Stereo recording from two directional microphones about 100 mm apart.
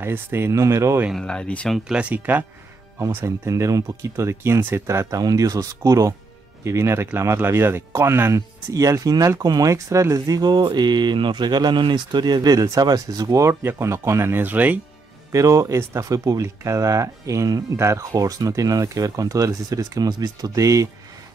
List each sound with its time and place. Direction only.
0.0 s speech: 25° right (ahead or behind)
1.1 s speech: 10° left (ahead or behind)
1.9 s speech: 10° right (ahead or behind)
3.4 s speech: 30° right (ahead or behind); by 14.8 s 15° right (ahead or behind)
15.3 s speech: 30° right (ahead or behind)